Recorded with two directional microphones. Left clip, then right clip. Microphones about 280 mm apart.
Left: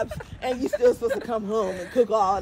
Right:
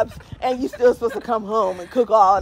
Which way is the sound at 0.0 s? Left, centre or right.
Right.